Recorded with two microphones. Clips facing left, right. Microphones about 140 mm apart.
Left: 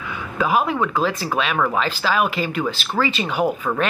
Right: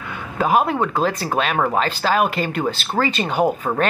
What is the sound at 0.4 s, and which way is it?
Speech, 40° right (ahead or behind).